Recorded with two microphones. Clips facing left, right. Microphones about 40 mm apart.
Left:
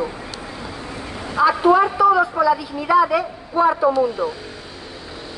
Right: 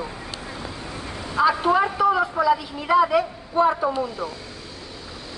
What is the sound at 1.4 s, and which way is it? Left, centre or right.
Speech, centre.